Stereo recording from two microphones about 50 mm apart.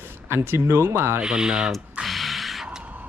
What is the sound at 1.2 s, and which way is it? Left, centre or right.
Speech, centre.